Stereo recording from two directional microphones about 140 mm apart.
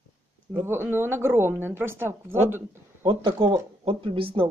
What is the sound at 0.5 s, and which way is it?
Speech, 15° right (ahead or behind).